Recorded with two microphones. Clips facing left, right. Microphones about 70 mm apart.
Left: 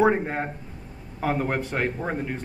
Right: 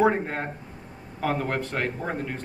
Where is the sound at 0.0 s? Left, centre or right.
Centre.